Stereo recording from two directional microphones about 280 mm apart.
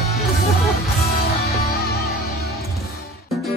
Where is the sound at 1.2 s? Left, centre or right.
Left.